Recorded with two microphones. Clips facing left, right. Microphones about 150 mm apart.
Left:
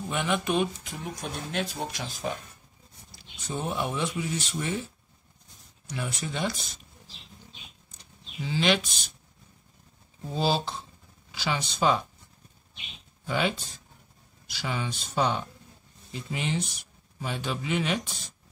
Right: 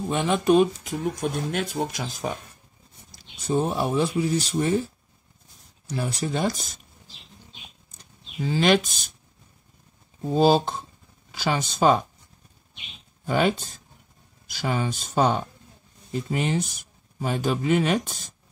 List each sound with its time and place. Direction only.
0.1 s speech: 35° right (ahead or behind)
1.5 s speech: 45° right (ahead or behind)
8.0 s speech: 45° right (ahead or behind)
10.2 s speech: 45° right (ahead or behind)
13.2 s speech: 45° right (ahead or behind)